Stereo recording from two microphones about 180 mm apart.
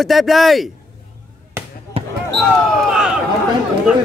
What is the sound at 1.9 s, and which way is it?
Basketball bounce, 30° right (ahead or behind).